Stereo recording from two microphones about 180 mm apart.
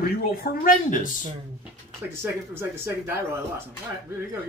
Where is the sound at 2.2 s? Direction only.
10° right (ahead or behind).